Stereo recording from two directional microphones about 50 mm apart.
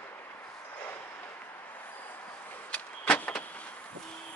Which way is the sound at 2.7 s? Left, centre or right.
Left.